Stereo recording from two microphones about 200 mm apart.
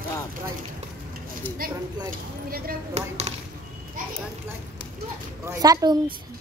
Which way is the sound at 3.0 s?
35° right (ahead or behind).